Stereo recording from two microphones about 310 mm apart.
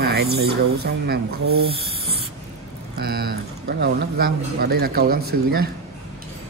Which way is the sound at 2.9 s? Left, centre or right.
Right.